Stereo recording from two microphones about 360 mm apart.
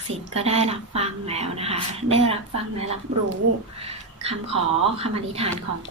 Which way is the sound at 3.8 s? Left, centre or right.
Centre.